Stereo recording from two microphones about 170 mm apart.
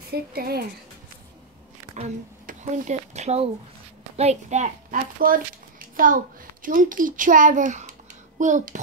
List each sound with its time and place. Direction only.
0.1 s speech: 65° right (ahead or behind)
2.4 s a child's voice: 45° right (ahead or behind)